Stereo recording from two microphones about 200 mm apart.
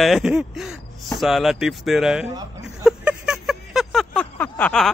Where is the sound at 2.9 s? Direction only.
5° right (ahead or behind).